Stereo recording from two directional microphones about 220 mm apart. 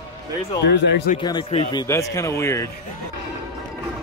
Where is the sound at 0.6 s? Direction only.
50° left (ahead or behind).